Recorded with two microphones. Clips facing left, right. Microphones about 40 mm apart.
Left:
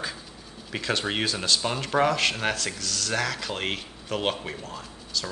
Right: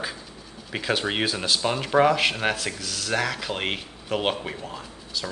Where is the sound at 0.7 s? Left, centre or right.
Centre.